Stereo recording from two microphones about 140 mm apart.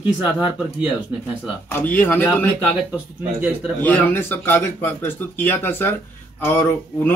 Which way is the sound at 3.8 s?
10° left (ahead or behind).